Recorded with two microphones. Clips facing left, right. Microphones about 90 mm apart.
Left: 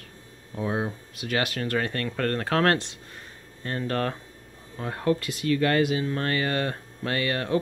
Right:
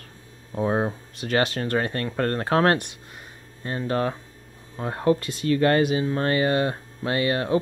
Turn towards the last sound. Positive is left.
turn(degrees=-25)  # may be behind; listen again after turning